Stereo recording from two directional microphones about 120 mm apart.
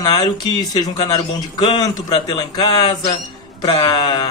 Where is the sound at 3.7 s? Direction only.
50° left (ahead or behind).